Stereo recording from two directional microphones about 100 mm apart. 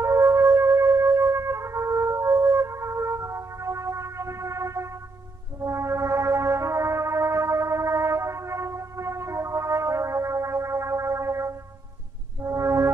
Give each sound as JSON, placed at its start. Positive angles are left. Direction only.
{"t": 0.0, "sound": "music", "side_deg": -30}